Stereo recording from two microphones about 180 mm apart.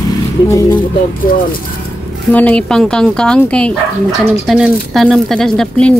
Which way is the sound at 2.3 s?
10° left (ahead or behind).